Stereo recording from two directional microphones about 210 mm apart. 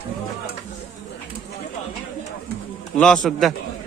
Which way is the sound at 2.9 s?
5° left (ahead or behind).